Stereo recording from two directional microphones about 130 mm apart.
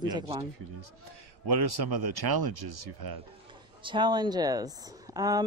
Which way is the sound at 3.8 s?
35° right (ahead or behind).